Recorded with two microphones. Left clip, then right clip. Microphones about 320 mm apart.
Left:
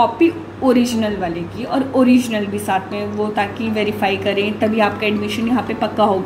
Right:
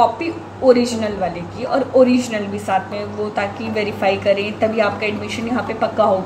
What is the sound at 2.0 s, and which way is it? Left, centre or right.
Speech, centre.